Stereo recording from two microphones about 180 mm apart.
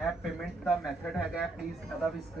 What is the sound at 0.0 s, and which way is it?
Speech, 5° right (ahead or behind).